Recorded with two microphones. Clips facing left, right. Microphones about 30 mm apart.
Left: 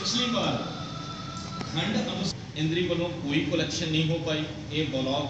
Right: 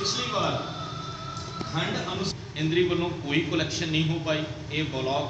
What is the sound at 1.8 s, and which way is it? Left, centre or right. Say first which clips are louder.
A man's voice: left 1 dB; centre.